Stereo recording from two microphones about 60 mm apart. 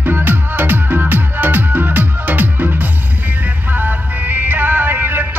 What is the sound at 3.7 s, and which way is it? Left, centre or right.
Music, right.